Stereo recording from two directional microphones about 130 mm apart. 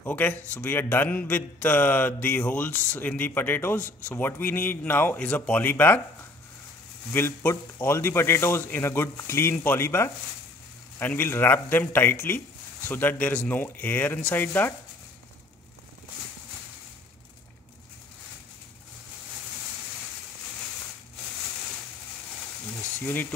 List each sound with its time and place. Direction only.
0.0 s speech: 15° left (ahead or behind)
7.1 s speech: 15° left (ahead or behind)
22.8 s frying: 15° left (ahead or behind)